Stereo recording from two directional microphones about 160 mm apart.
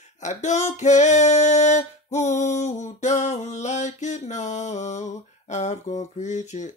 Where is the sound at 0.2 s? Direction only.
50° left (ahead or behind).